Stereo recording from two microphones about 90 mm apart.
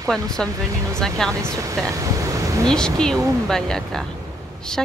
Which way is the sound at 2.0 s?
40° right (ahead or behind).